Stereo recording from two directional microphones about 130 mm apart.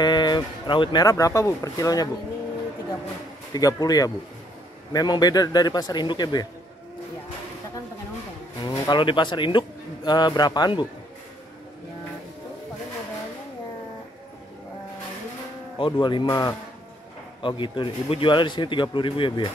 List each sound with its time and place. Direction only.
0.0 s speech: 35° left (ahead or behind)
3.5 s a man's voice: 30° left (ahead or behind)
8.6 s speech: 35° left (ahead or behind)
15.8 s a man's voice: 35° left (ahead or behind)
17.4 s a man's voice: 40° left (ahead or behind)